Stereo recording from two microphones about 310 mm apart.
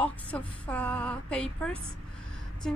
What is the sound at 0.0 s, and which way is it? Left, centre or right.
A woman's voice, centre.